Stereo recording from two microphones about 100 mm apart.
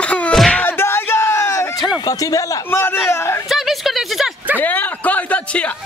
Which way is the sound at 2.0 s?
35° left (ahead or behind).